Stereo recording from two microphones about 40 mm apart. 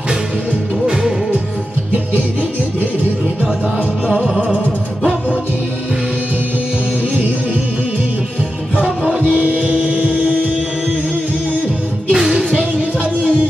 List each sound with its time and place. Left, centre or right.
4.1 s music: right
9.3 s music: right
12.1 s music: right